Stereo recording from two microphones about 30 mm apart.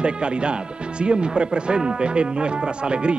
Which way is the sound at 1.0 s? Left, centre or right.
Right.